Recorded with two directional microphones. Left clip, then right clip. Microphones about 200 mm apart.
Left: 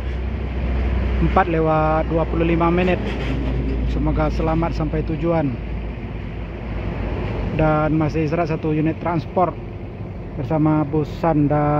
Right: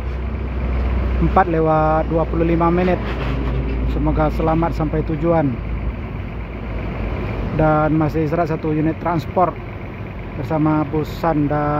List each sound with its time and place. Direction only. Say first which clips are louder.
1.3 s speech: right 2 dB; 15° right (ahead or behind)
7.5 s speech: right 3 dB; 15° right (ahead or behind)
10.5 s speech: right 1 dB; 5° right (ahead or behind)